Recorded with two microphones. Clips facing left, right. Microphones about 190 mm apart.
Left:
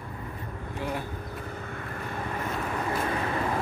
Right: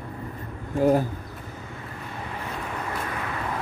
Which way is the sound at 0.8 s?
40° right (ahead or behind).